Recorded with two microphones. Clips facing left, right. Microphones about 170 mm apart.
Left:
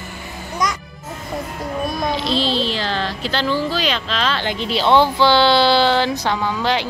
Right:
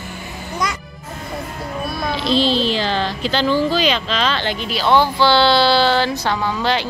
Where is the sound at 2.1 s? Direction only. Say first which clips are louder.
Right 7 dB; centre (ahead or behind).